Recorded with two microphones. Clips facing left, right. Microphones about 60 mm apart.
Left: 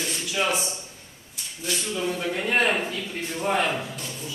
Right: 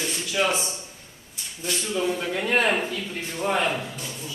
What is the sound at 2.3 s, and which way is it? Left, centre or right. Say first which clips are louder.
Speech: left 1 dB; centre.